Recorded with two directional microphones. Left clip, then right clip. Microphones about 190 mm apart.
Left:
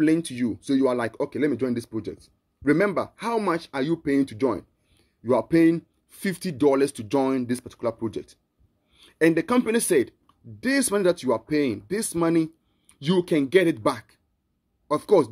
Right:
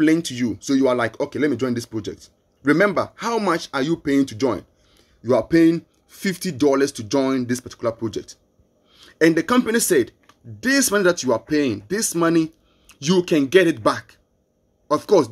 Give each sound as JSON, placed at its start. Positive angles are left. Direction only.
{"t": 0.0, "sound": "speech", "side_deg": 10}